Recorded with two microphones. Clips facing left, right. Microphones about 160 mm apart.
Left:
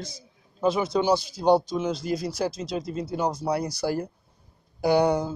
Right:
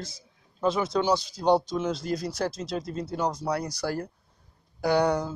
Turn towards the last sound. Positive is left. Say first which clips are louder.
# left 2 dB
turn(degrees=5)  # may be behind; listen again after turning